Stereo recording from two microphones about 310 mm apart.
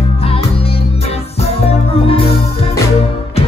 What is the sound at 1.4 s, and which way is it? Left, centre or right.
Music, centre.